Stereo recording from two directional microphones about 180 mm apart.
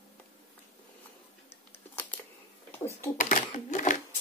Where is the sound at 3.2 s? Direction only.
45° left (ahead or behind).